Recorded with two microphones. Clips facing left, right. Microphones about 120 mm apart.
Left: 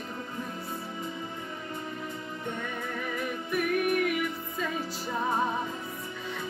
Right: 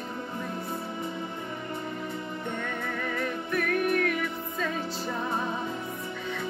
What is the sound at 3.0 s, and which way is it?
Music, 10° left (ahead or behind).